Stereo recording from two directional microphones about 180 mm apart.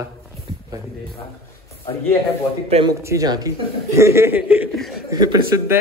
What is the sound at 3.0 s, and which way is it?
A man's voice, 15° right (ahead or behind).